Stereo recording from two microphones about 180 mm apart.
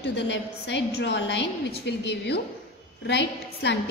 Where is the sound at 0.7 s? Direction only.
70° left (ahead or behind).